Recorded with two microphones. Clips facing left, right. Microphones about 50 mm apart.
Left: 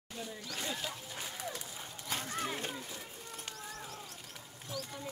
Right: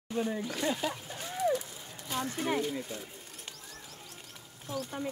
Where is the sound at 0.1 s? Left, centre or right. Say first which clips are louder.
Right 12 dB; right.